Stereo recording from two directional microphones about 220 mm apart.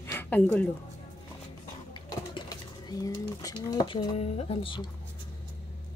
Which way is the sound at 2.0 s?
15° left (ahead or behind).